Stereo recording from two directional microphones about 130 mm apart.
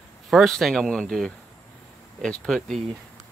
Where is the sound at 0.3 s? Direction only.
Centre (ahead or behind).